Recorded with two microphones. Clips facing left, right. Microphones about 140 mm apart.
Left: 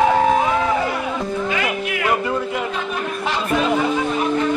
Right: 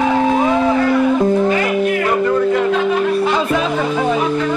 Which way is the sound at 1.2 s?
45° right (ahead or behind).